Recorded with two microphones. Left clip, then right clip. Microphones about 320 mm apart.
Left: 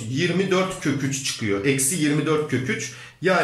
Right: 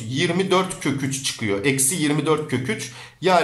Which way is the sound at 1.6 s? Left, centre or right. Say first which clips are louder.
Even; centre.